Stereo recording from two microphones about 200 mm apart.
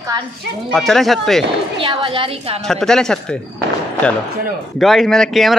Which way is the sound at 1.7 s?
25° right (ahead or behind).